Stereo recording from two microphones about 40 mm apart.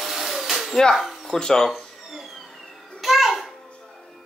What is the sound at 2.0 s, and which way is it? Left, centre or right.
Cat, centre.